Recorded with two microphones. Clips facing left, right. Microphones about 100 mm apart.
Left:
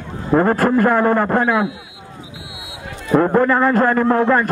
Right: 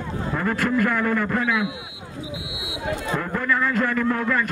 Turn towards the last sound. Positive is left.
turn(degrees=40)  # may be behind; listen again after turning